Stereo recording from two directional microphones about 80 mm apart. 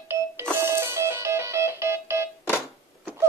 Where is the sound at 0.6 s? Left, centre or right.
Right.